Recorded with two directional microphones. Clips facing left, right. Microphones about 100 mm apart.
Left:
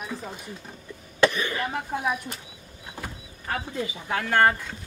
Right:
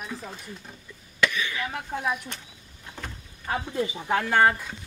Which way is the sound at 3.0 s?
10° left (ahead or behind).